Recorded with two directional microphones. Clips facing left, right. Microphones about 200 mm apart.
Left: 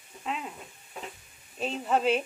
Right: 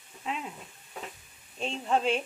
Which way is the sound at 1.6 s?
5° left (ahead or behind).